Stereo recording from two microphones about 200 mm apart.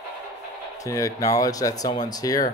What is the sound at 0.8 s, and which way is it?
Speech, 15° left (ahead or behind).